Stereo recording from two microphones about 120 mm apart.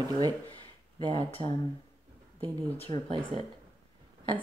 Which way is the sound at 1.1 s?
50° left (ahead or behind).